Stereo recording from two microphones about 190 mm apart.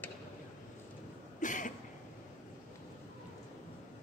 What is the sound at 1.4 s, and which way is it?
Cough, 45° left (ahead or behind).